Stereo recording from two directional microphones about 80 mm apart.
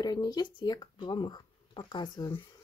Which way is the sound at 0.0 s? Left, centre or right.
Left.